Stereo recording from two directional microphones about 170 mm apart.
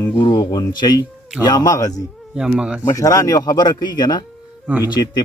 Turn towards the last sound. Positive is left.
turn(degrees=-10)  # may be behind; listen again after turning